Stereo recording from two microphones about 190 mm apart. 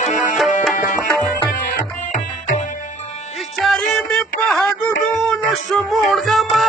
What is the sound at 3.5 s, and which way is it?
Music, centre (ahead or behind).